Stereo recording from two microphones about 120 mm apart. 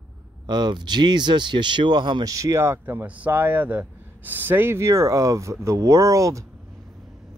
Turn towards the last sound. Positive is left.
turn(degrees=-25)  # may be behind; listen again after turning